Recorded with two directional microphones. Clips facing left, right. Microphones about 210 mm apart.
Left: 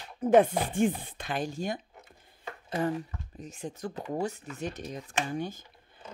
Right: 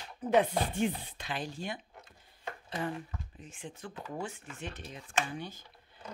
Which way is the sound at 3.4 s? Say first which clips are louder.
Left 9 dB; 40° left (ahead or behind).